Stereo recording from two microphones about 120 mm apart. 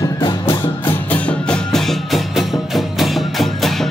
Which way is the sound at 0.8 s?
10° left (ahead or behind).